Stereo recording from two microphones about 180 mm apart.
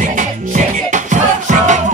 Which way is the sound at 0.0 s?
45° right (ahead or behind).